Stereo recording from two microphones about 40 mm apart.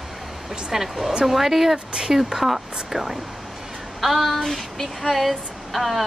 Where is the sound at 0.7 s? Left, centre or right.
Centre.